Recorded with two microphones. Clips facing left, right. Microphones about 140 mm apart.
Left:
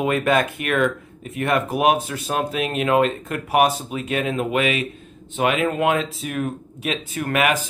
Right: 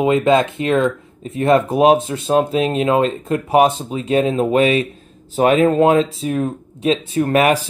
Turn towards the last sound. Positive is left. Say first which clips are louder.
# right 6 dB
turn(degrees=-35)  # may be behind; listen again after turning